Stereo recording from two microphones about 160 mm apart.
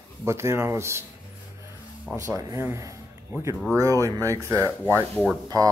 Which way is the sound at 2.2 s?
20° right (ahead or behind).